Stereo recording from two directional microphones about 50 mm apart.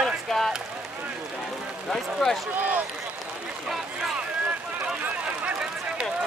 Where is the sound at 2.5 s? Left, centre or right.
Right.